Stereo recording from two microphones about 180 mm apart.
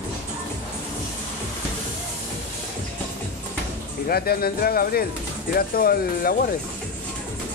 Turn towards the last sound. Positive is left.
turn(degrees=55)  # may be behind; listen again after turning